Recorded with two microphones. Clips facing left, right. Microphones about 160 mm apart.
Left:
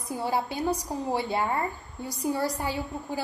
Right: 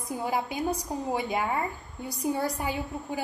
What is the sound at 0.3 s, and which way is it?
A woman's voice, 15° right (ahead or behind).